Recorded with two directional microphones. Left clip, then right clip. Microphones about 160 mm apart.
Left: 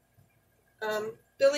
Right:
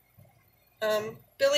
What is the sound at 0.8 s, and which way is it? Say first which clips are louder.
Speech: right 4 dB; 35° left (ahead or behind).